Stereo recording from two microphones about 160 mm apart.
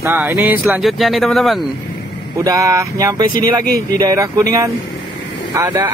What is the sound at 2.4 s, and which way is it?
Speech, 20° right (ahead or behind).